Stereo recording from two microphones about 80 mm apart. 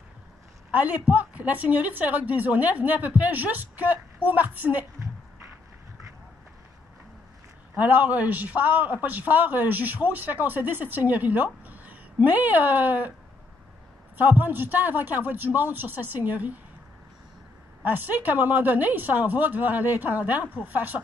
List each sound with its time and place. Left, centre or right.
0.7 s a man's voice: centre
7.7 s a man's voice: right
14.1 s a man's voice: right
17.8 s a man's voice: right